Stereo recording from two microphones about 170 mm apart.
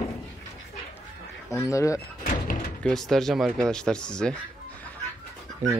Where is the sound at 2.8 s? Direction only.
5° left (ahead or behind).